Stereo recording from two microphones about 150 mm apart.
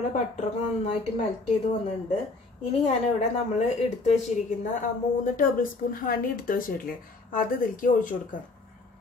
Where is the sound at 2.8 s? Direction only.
45° left (ahead or behind); by 8.4 s 65° left (ahead or behind).